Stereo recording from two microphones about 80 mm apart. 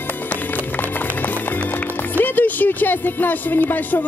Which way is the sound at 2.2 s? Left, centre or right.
Left.